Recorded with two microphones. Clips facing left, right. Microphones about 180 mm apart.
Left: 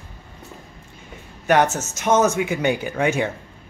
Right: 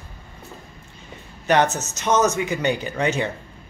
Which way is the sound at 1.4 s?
10° left (ahead or behind).